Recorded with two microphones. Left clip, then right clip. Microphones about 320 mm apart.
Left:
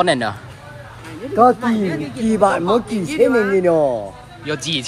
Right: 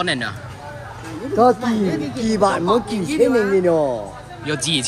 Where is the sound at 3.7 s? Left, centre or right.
Left.